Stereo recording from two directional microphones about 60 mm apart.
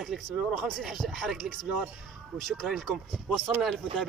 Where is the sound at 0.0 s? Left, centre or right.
Centre.